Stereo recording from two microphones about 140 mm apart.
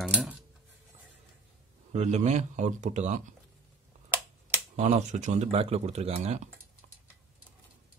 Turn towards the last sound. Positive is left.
turn(degrees=-55)  # may be behind; listen again after turning